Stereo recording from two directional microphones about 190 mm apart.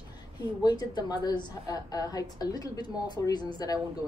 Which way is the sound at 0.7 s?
20° left (ahead or behind).